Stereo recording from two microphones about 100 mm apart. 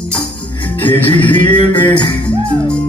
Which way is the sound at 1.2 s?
15° left (ahead or behind).